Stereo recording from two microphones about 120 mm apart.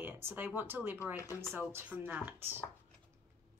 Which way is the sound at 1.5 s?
15° right (ahead or behind).